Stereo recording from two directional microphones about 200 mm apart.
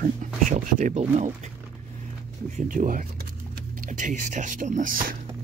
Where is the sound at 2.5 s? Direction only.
40° right (ahead or behind).